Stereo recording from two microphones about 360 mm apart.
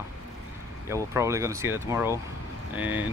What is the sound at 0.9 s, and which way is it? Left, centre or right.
Speech, centre.